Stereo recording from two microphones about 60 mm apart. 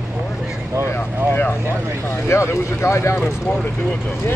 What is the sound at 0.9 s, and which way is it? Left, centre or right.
Speech, left.